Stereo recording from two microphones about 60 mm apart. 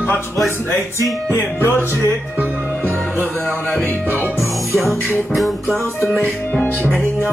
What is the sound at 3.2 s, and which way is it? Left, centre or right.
Music, left.